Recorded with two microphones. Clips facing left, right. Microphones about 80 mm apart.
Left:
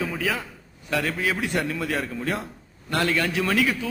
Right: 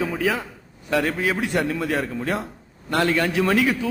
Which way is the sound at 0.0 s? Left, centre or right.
Right.